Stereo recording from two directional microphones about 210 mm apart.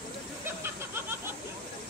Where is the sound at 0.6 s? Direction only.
10° right (ahead or behind).